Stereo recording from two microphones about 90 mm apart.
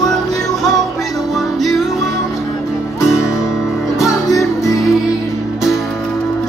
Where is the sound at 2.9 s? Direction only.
35° left (ahead or behind).